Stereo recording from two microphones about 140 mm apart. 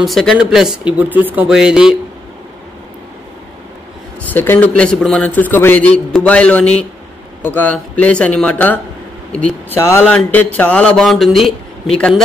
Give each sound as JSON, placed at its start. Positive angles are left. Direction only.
{"t": 0.0, "sound": "speech", "side_deg": 0}
{"t": 0.9, "sound": "speech", "side_deg": -10}
{"t": 4.3, "sound": "a man's voice", "side_deg": 15}